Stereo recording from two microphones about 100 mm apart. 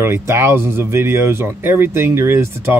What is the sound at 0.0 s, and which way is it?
Speech, 25° right (ahead or behind).